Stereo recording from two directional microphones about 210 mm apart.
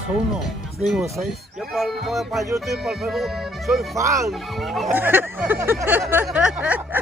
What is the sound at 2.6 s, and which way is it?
Speech, centre (ahead or behind).